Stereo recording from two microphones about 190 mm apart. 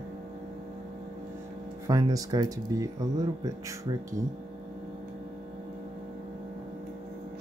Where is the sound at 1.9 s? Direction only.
20° right (ahead or behind).